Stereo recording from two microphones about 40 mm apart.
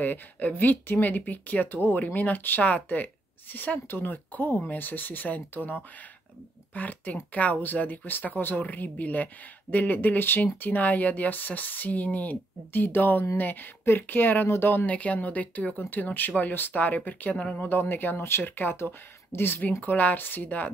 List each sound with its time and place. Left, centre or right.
0.0 s speech: left
1.8 s speech: left
14.9 s speech: left
15.9 s speech: left
17.6 s speech: left
18.2 s speech: left
18.5 s speech: left
19.6 s speech: left
20.4 s speech: left